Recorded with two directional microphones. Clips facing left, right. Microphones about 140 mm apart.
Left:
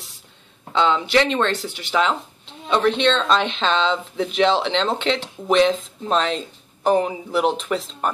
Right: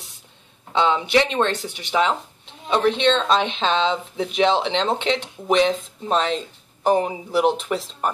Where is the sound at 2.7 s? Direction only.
10° right (ahead or behind).